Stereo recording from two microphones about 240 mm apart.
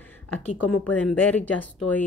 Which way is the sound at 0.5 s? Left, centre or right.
Left.